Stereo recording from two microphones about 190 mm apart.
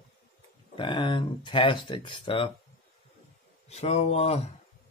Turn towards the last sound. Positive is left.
turn(degrees=35)  # may be behind; listen again after turning